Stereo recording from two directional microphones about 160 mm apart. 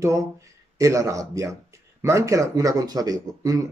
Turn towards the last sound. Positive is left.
turn(degrees=-20)  # may be behind; listen again after turning